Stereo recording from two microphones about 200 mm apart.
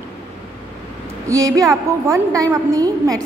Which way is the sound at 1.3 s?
15° right (ahead or behind).